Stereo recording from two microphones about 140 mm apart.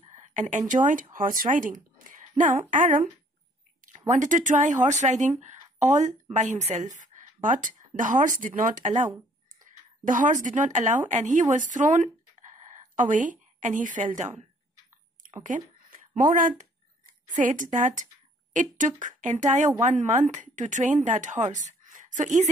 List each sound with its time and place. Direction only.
0.0 s speech: 60° right (ahead or behind)
1.1 s speech: 80° right
4.1 s a woman's voice: 65° right (ahead or behind)
10.0 s a woman's voice: 65° right (ahead or behind)
15.3 s speech: 65° right (ahead or behind)